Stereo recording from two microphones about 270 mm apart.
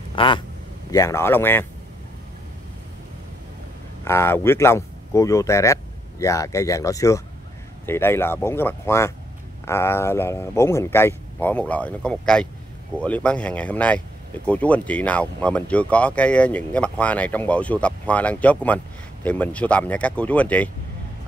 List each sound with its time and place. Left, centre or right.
0.1 s speech: centre
4.0 s speech: centre